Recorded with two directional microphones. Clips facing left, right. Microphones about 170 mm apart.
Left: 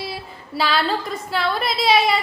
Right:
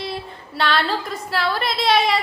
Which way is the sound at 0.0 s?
5° left (ahead or behind).